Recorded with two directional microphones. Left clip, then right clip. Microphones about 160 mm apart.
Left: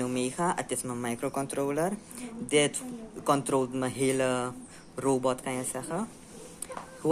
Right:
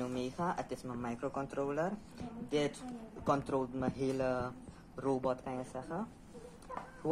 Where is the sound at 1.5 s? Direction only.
40° left (ahead or behind).